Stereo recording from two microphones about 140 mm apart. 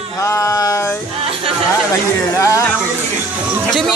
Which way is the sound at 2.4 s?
20° left (ahead or behind).